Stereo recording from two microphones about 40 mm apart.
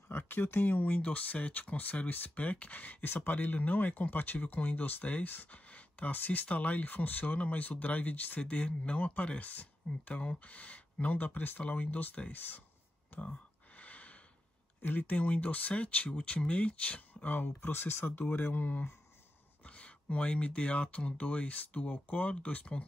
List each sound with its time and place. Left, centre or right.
0.1 s speech: left
0.8 s speech: left
5.7 s a sound: left
6.1 s speech: left
13.2 s gasp: left
14.8 s speech: left
17.6 s speech: left
18.0 s speech: left
19.6 s speech: left